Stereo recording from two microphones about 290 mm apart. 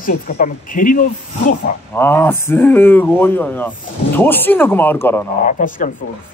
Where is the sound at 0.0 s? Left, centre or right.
Left.